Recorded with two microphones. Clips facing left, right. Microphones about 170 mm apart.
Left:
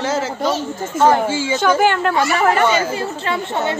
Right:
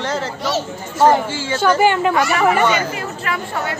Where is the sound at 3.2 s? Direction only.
25° left (ahead or behind).